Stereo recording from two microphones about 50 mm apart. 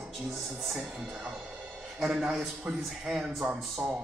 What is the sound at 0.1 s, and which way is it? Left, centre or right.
Speech, centre.